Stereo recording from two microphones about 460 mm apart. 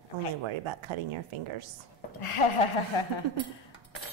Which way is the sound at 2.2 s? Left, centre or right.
Left.